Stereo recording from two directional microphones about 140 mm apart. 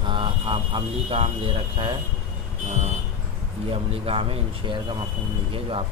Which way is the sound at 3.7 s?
45° right (ahead or behind).